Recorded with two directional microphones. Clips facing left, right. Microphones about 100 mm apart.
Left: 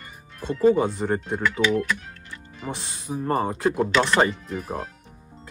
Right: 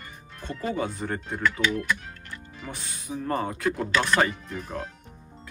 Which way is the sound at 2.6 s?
25° left (ahead or behind).